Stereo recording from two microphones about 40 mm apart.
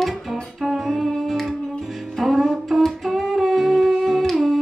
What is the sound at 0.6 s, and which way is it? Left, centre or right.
Humming, centre.